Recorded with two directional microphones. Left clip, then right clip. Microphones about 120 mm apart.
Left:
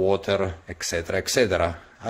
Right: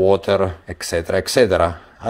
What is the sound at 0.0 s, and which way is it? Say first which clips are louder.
Speech: right 7 dB; 30° right (ahead or behind).